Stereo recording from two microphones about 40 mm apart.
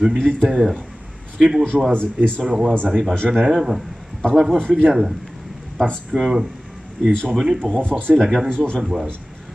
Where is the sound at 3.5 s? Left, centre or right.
Centre.